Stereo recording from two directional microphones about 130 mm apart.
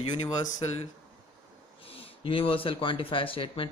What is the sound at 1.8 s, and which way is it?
Speech, 45° left (ahead or behind).